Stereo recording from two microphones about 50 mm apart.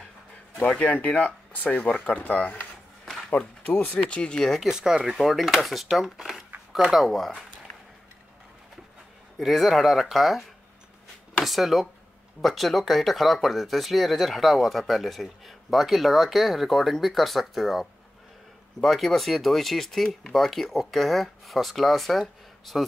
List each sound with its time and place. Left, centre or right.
0.6 s speech: left
4.6 s speech: centre
5.1 s speech: centre
9.4 s speech: centre
11.4 s speech: centre